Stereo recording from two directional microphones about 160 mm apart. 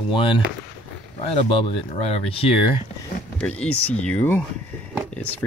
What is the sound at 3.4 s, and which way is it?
Speech, 5° left (ahead or behind).